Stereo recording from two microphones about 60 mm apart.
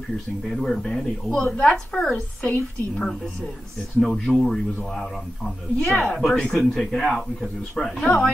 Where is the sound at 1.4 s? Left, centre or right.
Left.